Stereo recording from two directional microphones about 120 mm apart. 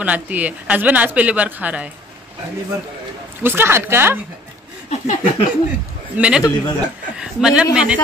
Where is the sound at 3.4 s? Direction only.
20° right (ahead or behind).